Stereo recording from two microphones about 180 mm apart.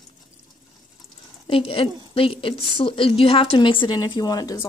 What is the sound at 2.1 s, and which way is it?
A woman's voice, 30° left (ahead or behind).